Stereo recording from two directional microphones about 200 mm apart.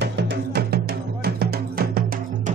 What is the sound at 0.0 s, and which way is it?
Music, 55° right (ahead or behind).